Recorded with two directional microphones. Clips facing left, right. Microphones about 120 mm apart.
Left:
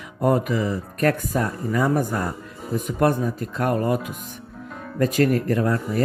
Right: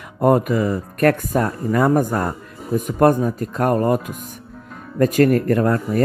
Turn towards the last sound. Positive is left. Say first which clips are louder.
# right 4 dB
turn(degrees=-55)  # may be behind; listen again after turning